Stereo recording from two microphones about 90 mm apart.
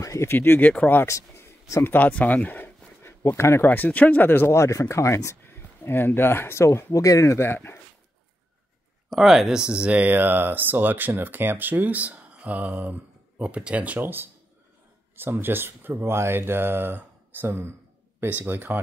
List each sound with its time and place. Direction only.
0.0 s a sound: 40° left (ahead or behind)
0.3 s speech: 25° left (ahead or behind)
4.5 s speech: 35° left (ahead or behind)
9.1 s speech: 5° right (ahead or behind); by 18.8 s 20° right (ahead or behind)